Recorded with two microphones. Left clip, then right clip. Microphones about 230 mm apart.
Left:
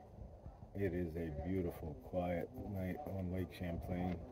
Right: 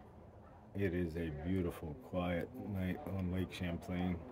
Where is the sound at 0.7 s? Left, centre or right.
Centre.